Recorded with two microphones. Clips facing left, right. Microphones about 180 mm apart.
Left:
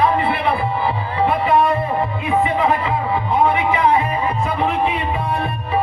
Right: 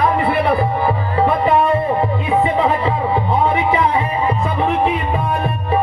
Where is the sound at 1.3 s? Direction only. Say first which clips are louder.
Right 1 dB; 35° right (ahead or behind).